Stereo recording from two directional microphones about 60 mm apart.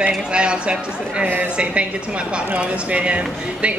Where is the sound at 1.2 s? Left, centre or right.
Right.